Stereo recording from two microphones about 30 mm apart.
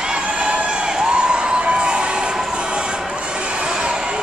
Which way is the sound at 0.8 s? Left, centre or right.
Right.